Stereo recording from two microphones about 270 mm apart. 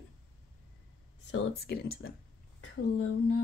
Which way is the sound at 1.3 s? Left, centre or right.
Left.